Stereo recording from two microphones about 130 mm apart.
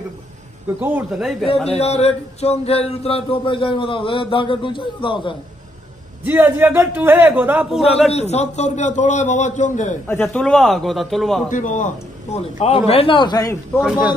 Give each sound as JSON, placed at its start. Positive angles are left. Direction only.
{"t": 0.7, "sound": "a man's voice", "side_deg": -15}
{"t": 1.7, "sound": "a sound", "side_deg": 55}
{"t": 6.2, "sound": "a man's voice", "side_deg": -15}
{"t": 8.1, "sound": "a man's voice", "side_deg": 55}
{"t": 10.2, "sound": "speech", "side_deg": 5}
{"t": 11.5, "sound": "a sound", "side_deg": 75}
{"t": 13.7, "sound": "a man's voice", "side_deg": -10}